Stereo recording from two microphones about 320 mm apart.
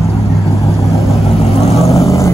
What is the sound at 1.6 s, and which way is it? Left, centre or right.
Vehicle, centre.